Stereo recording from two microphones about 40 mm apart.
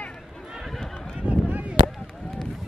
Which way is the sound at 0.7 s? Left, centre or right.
Centre.